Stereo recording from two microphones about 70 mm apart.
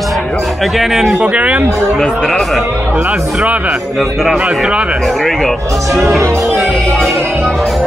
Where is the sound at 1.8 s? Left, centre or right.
Centre.